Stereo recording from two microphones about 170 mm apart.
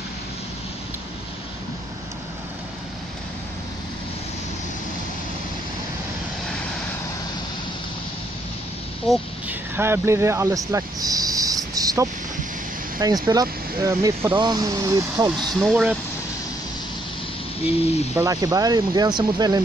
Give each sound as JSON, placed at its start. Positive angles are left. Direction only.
{"t": 9.1, "sound": "speech", "side_deg": -10}
{"t": 10.7, "sound": "a sound", "side_deg": -20}
{"t": 13.0, "sound": "speech", "side_deg": -20}
{"t": 17.6, "sound": "speech", "side_deg": 35}
{"t": 18.1, "sound": "speech", "side_deg": -20}